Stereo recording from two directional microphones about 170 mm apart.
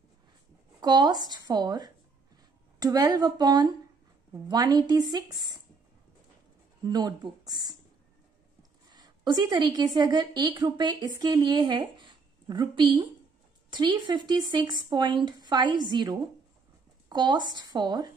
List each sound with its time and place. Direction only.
0.7 s speech: 25° right (ahead or behind)
6.8 s speech: 25° right (ahead or behind)
8.9 s a woman's voice: 25° right (ahead or behind)